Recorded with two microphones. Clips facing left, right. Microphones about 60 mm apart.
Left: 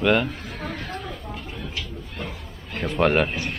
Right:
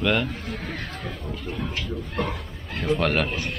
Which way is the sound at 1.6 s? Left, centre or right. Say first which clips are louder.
Right 4 dB; right.